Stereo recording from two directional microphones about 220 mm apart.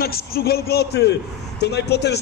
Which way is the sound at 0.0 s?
45° left (ahead or behind).